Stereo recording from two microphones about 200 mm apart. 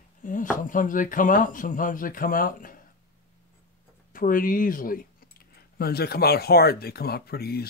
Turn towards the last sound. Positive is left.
turn(degrees=50)  # may be behind; listen again after turning